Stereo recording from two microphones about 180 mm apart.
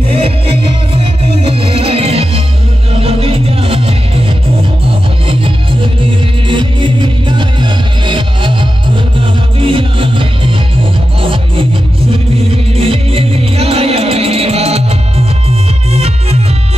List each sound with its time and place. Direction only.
0.1 s music: 30° right (ahead or behind)
5.3 s music: 30° right (ahead or behind)